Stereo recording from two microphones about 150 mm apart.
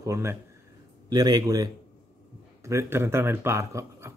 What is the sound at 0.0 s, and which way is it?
Speech, 20° right (ahead or behind).